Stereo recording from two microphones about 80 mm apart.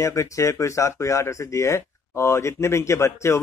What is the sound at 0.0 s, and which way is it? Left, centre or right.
Speech, left.